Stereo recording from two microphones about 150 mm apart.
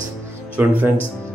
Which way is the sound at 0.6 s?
10° right (ahead or behind).